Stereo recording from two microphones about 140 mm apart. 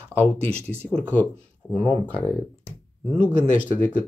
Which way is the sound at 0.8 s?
10° left (ahead or behind).